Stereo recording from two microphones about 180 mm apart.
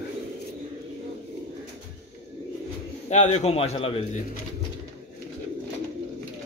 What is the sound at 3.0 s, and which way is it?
Speech, 40° left (ahead or behind).